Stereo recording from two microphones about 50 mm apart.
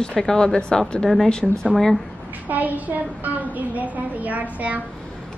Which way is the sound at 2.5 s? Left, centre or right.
Right.